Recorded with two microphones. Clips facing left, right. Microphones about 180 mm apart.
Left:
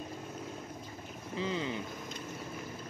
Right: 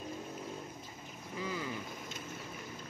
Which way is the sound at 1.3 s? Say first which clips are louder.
Left 4 dB; 25° left (ahead or behind).